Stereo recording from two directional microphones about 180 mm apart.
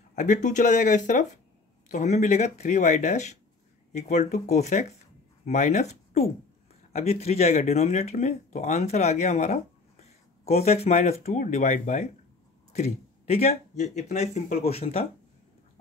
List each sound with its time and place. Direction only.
0.1 s speech: 45° left (ahead or behind)